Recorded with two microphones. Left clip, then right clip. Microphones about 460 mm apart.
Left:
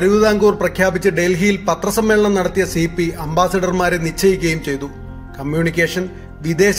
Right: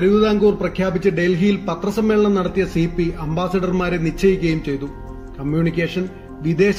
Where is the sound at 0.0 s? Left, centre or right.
Centre.